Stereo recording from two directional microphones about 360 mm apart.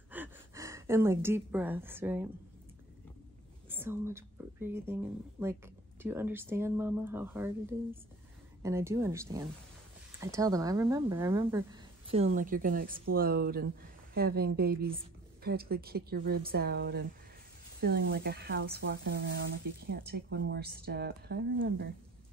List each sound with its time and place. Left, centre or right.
0.1 s speech: centre
3.6 s a woman's voice: centre; by 21.8 s right